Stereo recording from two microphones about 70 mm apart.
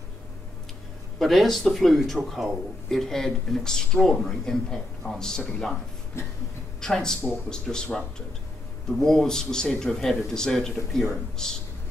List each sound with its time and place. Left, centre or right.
1.2 s speech: centre
6.2 s cough: left
6.8 s a man's voice: centre
9.0 s a man's voice: centre